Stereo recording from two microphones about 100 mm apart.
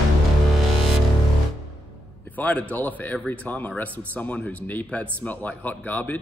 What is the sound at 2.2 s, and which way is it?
Speech, 15° left (ahead or behind).